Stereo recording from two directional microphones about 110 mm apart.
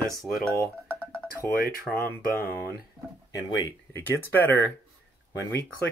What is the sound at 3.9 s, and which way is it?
Speech, 20° left (ahead or behind).